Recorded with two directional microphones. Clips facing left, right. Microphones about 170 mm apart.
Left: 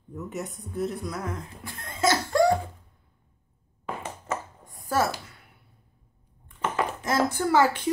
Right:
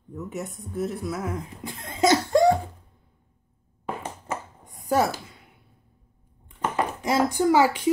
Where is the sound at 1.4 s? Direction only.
20° right (ahead or behind).